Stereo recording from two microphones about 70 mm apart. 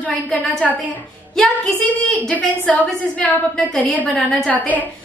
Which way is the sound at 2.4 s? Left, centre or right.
Centre.